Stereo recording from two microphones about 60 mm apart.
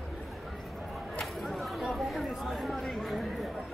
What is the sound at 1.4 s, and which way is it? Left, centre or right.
Chatter, centre.